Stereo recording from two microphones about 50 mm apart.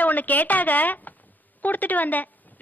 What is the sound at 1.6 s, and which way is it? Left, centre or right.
Speech, left.